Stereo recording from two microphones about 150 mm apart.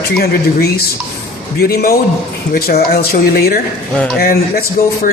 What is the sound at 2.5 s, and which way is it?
Speech, 90° left.